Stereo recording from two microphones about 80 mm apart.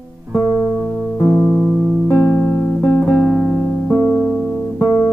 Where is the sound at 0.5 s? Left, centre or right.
Centre.